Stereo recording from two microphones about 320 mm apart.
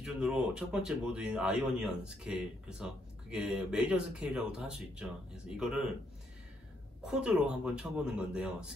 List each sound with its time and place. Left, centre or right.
0.0 s speech: centre
7.1 s speech: centre